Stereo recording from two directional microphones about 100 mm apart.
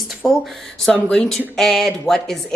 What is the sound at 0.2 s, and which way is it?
Speech, 5° left (ahead or behind).